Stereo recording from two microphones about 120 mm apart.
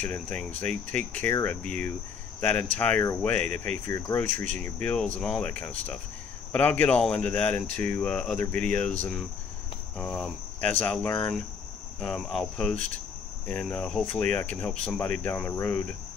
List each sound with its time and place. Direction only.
0.0 s speech: 10° left (ahead or behind)
3.2 s speech: 15° left (ahead or behind)
9.9 s speech: 10° left (ahead or behind)